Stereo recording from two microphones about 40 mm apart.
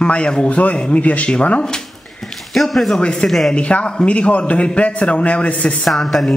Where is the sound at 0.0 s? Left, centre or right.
Left.